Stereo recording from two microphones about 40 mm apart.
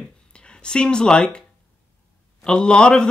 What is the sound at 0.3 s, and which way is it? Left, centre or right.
Speech, left.